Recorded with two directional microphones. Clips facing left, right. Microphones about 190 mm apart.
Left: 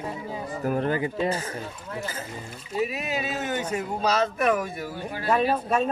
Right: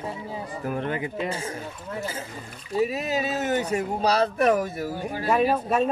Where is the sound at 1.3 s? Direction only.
25° right (ahead or behind).